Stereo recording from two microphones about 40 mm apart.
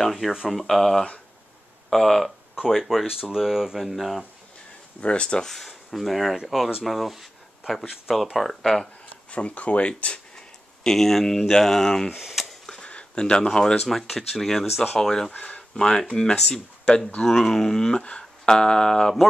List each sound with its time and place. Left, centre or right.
0.0 s speech: centre
3.1 s speech: centre
5.0 s speech: left
5.6 s speech: centre
9.3 s speech: left
10.8 s speech: centre
12.1 s speech: centre
12.7 s speech: left
13.8 s speech: centre
15.3 s speech: left
15.7 s speech: centre
17.2 s speech: centre